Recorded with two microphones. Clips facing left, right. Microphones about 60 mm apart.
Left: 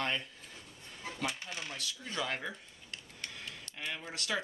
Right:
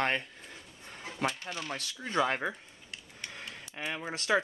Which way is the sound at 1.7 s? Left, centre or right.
Right.